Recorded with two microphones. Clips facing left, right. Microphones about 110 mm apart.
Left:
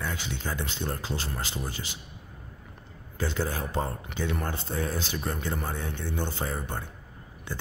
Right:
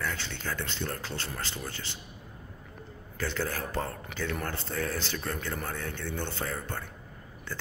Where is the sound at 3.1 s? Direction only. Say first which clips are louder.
Left 2 dB; 20° left (ahead or behind).